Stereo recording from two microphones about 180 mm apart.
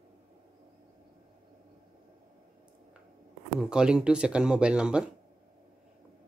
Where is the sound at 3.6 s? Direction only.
5° right (ahead or behind).